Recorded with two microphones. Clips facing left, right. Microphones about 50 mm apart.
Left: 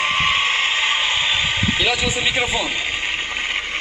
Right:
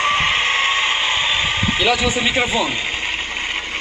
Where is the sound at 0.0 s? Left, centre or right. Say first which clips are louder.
Right 1 dB; centre.